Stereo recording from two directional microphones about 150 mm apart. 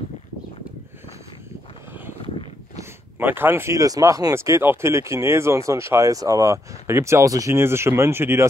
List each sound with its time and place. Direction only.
2.8 s speech: 15° right (ahead or behind)